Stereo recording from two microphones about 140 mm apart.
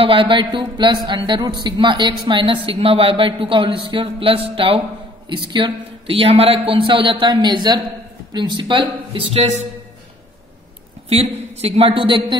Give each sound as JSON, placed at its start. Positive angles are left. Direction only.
{"t": 0.0, "sound": "speech", "side_deg": -40}
{"t": 11.1, "sound": "a woman's voice", "side_deg": -50}